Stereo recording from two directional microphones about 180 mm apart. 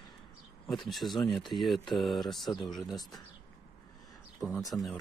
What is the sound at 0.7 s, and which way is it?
Speech, centre (ahead or behind).